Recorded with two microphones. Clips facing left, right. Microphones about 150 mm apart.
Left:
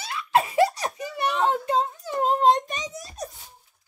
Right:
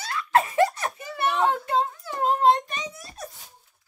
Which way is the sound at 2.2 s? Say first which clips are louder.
Left 1 dB; 20° left (ahead or behind).